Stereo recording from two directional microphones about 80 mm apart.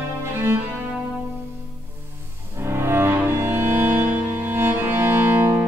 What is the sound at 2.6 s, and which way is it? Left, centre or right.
Music, right.